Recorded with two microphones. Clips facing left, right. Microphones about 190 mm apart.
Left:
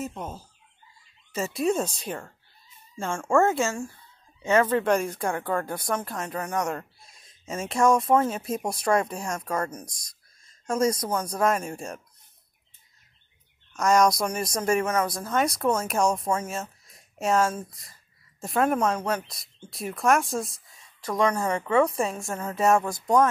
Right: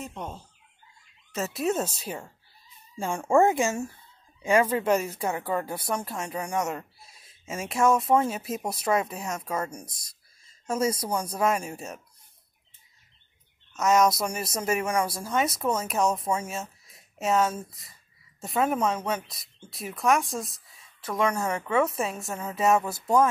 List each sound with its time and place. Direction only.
0.0 s speech: 5° left (ahead or behind)
13.7 s speech: 5° right (ahead or behind)